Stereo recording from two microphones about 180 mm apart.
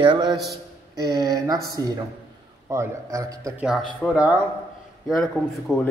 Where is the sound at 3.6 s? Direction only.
Centre (ahead or behind).